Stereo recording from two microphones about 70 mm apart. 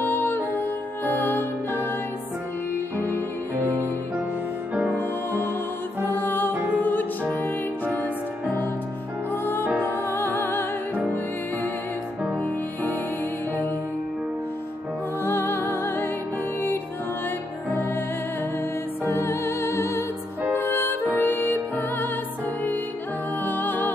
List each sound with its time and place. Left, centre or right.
0.0 s music: left
3.5 s music: right
4.9 s music: left
9.3 s music: left
15.2 s music: left
19.0 s music: left
23.4 s music: left